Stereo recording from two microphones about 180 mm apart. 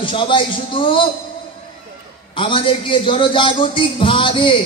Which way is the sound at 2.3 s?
30° left (ahead or behind).